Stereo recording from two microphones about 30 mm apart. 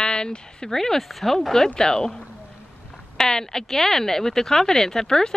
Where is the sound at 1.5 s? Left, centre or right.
Left.